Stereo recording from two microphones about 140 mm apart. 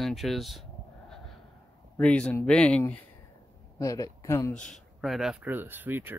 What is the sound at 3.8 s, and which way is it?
Speech, 25° left (ahead or behind).